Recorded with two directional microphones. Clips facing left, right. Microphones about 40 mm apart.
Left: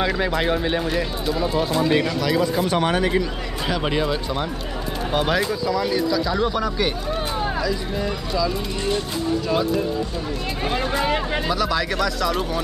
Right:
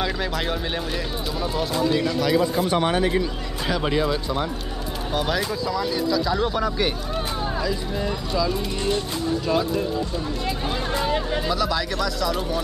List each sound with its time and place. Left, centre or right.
0.0 s speech: centre
1.8 s speech: left
3.8 s speech: centre
5.7 s speech: centre
8.0 s speech: centre
11.4 s speech: centre